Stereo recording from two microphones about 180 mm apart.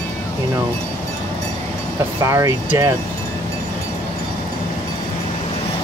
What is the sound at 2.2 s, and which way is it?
Speech, 15° right (ahead or behind).